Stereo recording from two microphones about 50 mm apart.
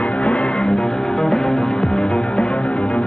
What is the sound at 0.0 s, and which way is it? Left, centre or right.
Music, left.